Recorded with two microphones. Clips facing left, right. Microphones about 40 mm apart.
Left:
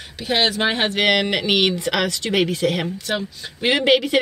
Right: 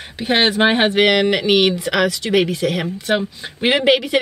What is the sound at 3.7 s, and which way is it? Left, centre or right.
Speech, centre.